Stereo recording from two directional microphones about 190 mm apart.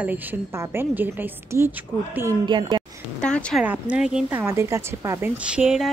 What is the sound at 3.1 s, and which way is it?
Speech, 5° left (ahead or behind).